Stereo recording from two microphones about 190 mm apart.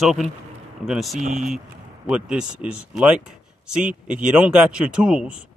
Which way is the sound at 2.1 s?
5° right (ahead or behind).